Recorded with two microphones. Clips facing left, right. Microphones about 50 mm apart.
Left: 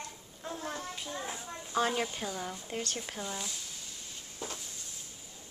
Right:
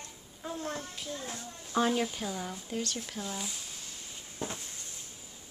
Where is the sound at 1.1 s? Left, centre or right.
Centre.